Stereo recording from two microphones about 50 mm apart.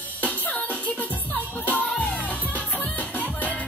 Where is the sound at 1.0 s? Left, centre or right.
Left.